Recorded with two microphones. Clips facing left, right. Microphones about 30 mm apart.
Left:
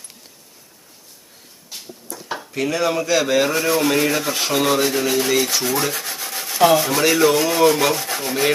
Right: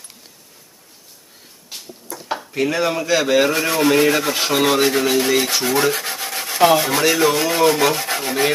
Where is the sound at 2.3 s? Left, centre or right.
Centre.